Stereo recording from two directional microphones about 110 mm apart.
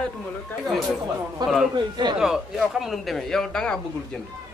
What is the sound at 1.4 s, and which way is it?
Speech, 40° right (ahead or behind).